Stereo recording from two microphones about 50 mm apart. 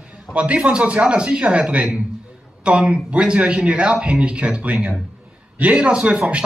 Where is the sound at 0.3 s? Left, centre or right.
Right.